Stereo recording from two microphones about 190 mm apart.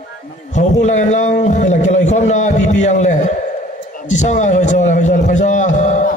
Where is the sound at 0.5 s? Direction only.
40° left (ahead or behind).